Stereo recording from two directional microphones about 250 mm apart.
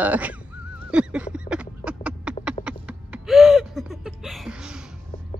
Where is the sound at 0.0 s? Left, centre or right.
Centre.